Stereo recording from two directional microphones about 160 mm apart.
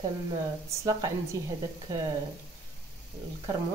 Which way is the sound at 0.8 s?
25° right (ahead or behind).